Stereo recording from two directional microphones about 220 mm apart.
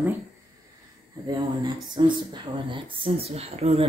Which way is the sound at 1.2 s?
20° right (ahead or behind).